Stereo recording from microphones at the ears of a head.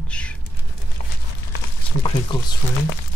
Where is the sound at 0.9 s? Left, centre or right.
Left.